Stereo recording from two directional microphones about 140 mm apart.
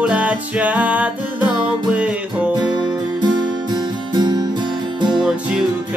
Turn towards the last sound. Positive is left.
turn(degrees=-5)  # may be behind; listen again after turning